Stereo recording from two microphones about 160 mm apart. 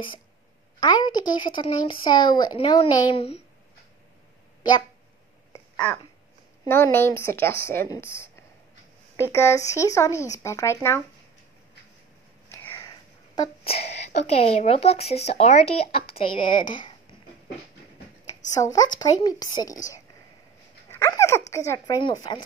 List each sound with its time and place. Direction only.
0.7 s speech: 25° left (ahead or behind)
6.6 s speech: 15° left (ahead or behind)
9.3 s speech: 20° left (ahead or behind)
12.7 s sneeze: 25° left (ahead or behind)
13.7 s speech: 45° left (ahead or behind)
18.5 s speech: 25° left (ahead or behind)
21.1 s speech: 20° left (ahead or behind)